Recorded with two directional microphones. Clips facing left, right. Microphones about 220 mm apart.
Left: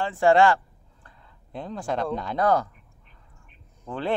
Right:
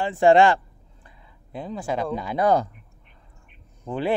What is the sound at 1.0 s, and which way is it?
Speech, 5° right (ahead or behind).